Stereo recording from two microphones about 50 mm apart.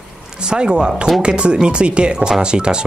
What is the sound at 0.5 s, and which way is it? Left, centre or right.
Speech, centre.